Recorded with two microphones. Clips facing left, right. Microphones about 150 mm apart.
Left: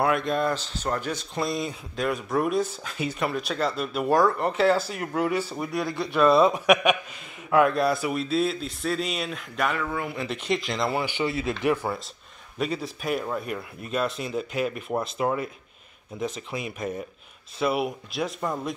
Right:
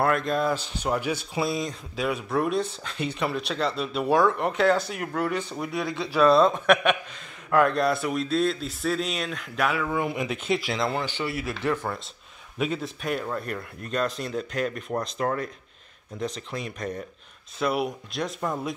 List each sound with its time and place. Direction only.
0.0 s speech: centre (ahead or behind)
0.6 s speech: 10° right (ahead or behind)
9.9 s speech: 15° right (ahead or behind)
10.2 s speech: centre (ahead or behind)
12.5 s speech: centre (ahead or behind)